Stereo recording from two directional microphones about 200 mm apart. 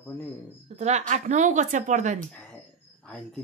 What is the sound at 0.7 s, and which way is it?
Speech, 35° right (ahead or behind).